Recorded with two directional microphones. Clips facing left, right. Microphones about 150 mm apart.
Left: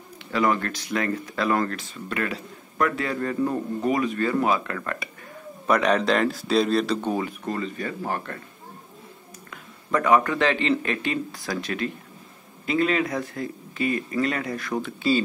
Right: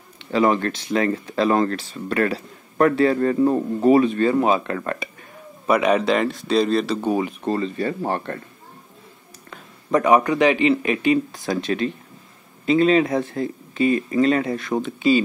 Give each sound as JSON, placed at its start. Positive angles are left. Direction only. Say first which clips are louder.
{"t": 0.3, "sound": "speech", "louder": "right 5 dB", "side_deg": -25}
{"t": 5.7, "sound": "speech", "louder": "right 3 dB", "side_deg": -10}
{"t": 7.4, "sound": "speech", "louder": "right 6 dB", "side_deg": -30}
{"t": 9.8, "sound": "speech", "louder": "right 4 dB", "side_deg": -20}